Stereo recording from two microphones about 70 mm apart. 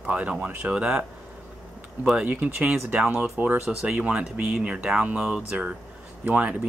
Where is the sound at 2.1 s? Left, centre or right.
Right.